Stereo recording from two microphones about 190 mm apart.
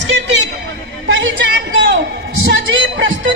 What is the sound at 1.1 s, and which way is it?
Speech, 80° right.